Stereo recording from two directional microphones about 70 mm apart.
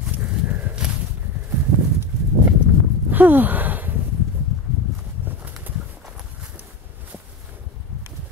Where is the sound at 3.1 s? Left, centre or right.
Right.